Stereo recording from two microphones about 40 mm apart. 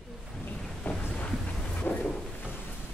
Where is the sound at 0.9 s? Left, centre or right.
Left.